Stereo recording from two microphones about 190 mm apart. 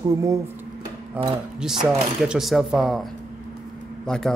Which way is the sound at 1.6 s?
5° right (ahead or behind).